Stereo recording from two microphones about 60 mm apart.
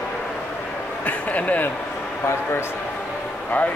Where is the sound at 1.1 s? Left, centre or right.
Left.